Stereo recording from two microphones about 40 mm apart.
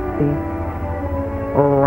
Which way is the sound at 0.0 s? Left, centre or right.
Centre.